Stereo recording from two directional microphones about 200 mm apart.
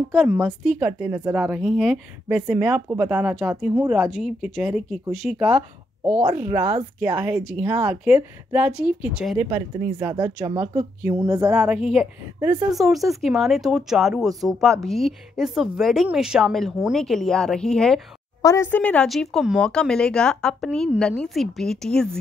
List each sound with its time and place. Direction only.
0.1 s speech: centre (ahead or behind); by 7.9 s 15° right (ahead or behind)
7.9 s speech: 5° right (ahead or behind)
12.4 s speech: 15° right (ahead or behind)
12.7 s speech: centre (ahead or behind)
18.4 s speech: 15° left (ahead or behind)